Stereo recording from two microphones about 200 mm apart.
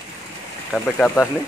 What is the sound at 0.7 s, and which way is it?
Speech, 5° left (ahead or behind).